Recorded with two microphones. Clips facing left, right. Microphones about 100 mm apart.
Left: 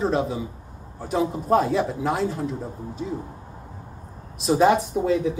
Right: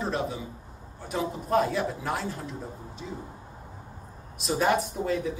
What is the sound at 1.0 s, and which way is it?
Speech, 30° left (ahead or behind).